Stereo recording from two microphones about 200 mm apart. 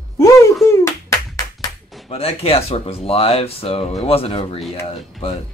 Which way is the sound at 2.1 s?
30° left (ahead or behind).